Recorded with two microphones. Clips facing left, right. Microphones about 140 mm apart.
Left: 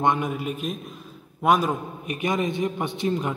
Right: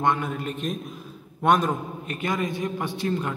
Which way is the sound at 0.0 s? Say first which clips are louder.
Left 1 dB; 15° left (ahead or behind).